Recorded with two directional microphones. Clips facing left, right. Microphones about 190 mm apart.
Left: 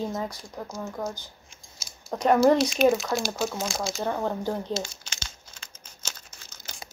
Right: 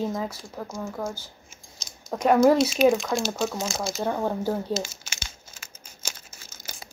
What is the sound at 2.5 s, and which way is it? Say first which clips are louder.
Speech: right 1 dB; centre (ahead or behind).